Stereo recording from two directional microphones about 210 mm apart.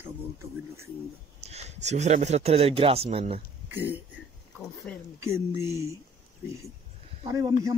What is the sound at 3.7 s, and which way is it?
Speech, 10° right (ahead or behind).